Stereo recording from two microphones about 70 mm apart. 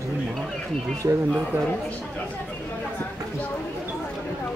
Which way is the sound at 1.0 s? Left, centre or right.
Right.